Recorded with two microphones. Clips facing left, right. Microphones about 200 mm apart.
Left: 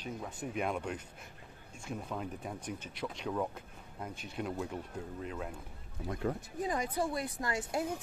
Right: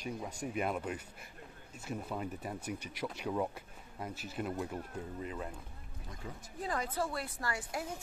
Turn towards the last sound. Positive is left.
turn(degrees=20)  # may be behind; listen again after turning